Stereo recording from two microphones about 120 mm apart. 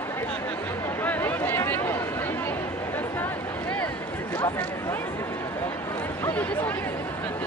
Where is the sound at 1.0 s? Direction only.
15° left (ahead or behind).